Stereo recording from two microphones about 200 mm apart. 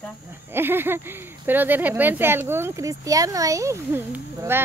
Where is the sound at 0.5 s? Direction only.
10° right (ahead or behind).